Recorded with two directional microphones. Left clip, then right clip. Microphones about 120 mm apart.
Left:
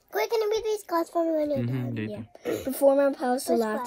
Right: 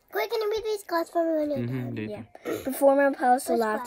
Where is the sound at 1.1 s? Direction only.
25° left (ahead or behind).